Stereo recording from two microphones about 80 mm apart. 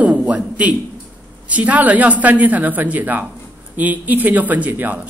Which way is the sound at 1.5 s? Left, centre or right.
Centre.